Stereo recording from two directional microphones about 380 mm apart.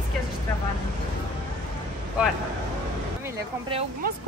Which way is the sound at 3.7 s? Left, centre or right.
Centre.